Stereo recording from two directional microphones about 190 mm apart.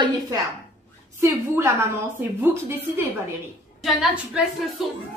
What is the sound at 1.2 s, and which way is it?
A woman's voice, 15° right (ahead or behind).